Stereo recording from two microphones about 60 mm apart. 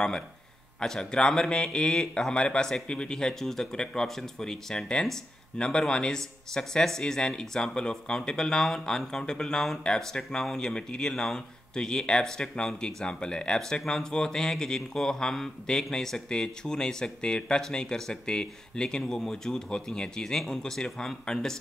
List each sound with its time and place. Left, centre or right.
0.7 s speech: centre